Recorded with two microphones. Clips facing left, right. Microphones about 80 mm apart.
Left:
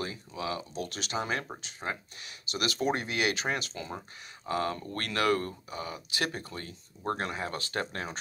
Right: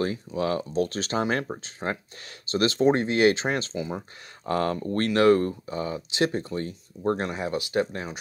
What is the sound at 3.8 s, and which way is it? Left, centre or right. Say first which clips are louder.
Speech: right 8 dB; centre.